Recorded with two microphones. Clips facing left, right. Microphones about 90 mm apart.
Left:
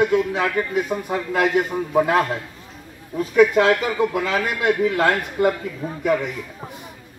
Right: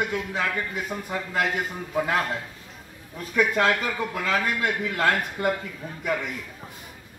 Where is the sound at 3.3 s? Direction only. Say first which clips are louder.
Left 7 dB; 20° left (ahead or behind).